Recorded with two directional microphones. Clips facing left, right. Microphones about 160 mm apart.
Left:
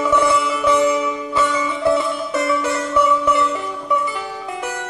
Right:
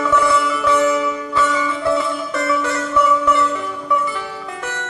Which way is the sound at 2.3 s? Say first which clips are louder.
Left 2 dB; 20° left (ahead or behind).